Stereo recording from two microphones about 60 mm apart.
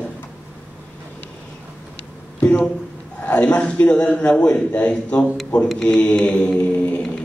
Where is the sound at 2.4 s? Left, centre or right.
Left.